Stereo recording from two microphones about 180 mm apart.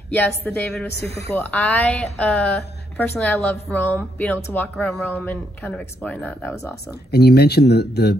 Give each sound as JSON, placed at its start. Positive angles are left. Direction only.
{"t": 0.1, "sound": "a woman's voice", "side_deg": 10}
{"t": 7.1, "sound": "speech", "side_deg": 65}